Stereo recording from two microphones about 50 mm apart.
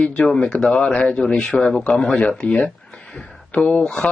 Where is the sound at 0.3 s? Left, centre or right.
Centre.